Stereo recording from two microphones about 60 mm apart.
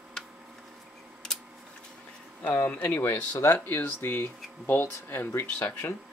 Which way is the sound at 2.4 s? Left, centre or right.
Left.